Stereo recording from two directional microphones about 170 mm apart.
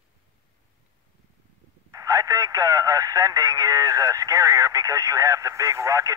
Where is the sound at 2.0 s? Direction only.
20° right (ahead or behind).